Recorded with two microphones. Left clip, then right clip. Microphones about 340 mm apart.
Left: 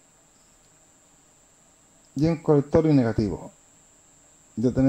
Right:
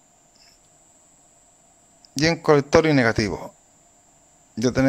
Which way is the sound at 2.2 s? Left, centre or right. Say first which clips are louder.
Right 4 dB; right.